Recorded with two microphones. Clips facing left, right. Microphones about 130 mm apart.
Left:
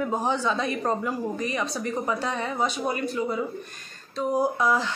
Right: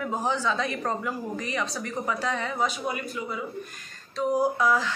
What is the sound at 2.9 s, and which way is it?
Speech, 35° left (ahead or behind).